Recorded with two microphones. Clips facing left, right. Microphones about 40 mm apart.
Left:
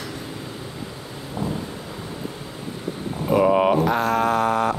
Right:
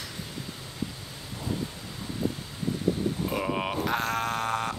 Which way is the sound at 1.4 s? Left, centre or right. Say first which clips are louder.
Left 8 dB; left.